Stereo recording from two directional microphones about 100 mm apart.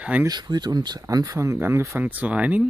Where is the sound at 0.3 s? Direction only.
45° right (ahead or behind).